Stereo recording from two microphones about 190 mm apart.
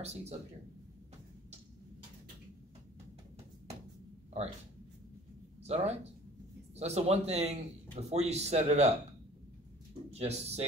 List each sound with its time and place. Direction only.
0.0 s a man's voice: 35° right (ahead or behind)
5.6 s a man's voice: 35° right (ahead or behind)
10.1 s a man's voice: 35° right (ahead or behind)